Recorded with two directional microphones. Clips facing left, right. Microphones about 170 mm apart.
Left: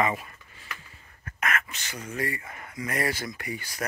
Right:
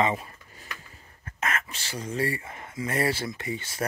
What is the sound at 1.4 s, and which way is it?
Speech, 30° right (ahead or behind).